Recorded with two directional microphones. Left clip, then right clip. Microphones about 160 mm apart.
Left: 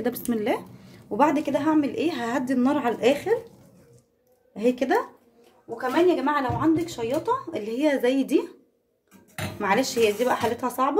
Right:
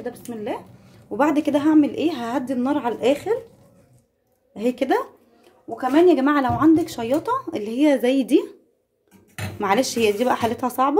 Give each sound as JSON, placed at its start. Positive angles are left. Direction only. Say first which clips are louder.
{"t": 0.3, "sound": "speech", "louder": "left 3 dB", "side_deg": 30}
{"t": 1.3, "sound": "a woman's voice", "louder": "right 5 dB", "side_deg": -20}
{"t": 4.6, "sound": "a woman's voice", "louder": "right 1 dB", "side_deg": -15}
{"t": 6.0, "sound": "speech", "louder": "right 5 dB", "side_deg": -45}
{"t": 9.6, "sound": "a woman's voice", "louder": "right 2 dB", "side_deg": -25}